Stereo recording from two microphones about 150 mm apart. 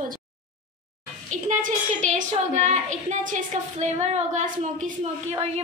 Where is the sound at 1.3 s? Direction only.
55° right (ahead or behind).